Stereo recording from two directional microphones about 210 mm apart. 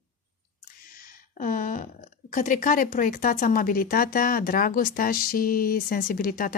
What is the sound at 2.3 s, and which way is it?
A woman's voice, 40° left (ahead or behind).